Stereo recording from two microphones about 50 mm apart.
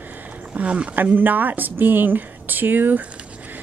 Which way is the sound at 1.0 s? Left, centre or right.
Right.